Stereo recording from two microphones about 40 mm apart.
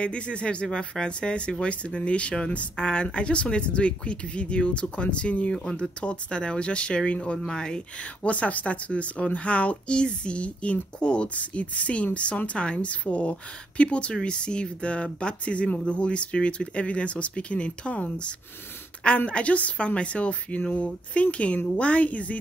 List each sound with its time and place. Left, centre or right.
0.0 s speech: left
5.5 s speech: left
8.3 s speech: left